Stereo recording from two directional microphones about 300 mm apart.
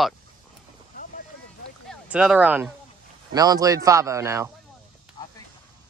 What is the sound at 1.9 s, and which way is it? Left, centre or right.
A man's voice, centre.